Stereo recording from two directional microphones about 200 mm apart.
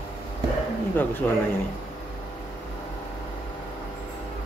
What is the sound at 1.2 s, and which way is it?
Speech, 5° left (ahead or behind).